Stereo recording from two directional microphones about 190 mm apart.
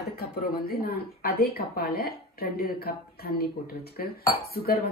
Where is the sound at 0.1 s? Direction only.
55° left (ahead or behind).